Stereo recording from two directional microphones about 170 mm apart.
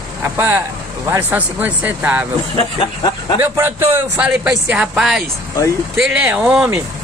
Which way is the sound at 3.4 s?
15° right (ahead or behind).